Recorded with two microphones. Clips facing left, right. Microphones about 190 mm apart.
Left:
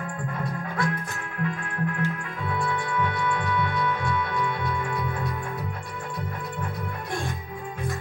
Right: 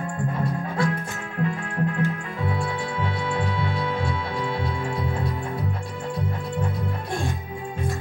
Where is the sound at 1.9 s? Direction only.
25° right (ahead or behind).